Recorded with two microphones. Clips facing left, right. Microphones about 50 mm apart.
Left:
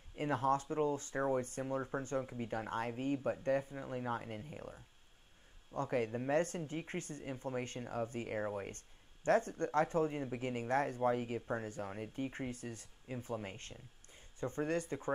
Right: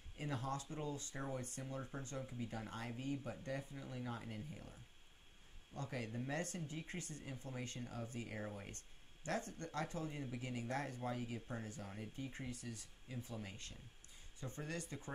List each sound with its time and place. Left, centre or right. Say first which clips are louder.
0.2 s speech: left 10 dB; left